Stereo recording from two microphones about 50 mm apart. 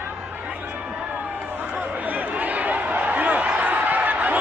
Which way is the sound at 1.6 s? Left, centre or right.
Right.